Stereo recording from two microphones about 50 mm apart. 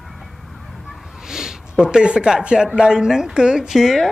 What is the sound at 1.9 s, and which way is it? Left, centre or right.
Speech, centre.